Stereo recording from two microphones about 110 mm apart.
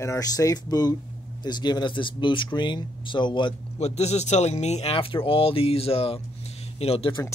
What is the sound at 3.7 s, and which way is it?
Speech, 80° left.